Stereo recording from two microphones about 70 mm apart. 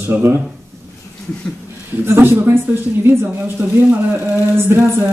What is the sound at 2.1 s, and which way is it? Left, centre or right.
Speech, right.